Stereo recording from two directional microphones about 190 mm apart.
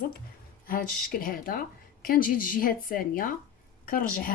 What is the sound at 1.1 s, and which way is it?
Speech, 50° left (ahead or behind).